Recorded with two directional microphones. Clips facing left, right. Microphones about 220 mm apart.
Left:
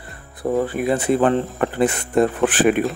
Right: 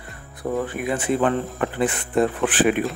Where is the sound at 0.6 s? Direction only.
35° left (ahead or behind).